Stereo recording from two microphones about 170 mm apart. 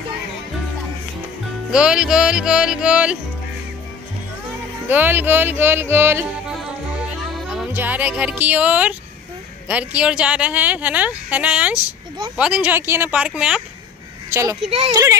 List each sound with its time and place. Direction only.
1.7 s speech: 5° right (ahead or behind)
4.8 s speech: 10° right (ahead or behind)
7.5 s speech: 10° right (ahead or behind)
14.3 s speech: 20° right (ahead or behind)